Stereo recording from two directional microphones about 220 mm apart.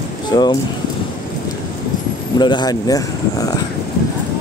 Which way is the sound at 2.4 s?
20° left (ahead or behind).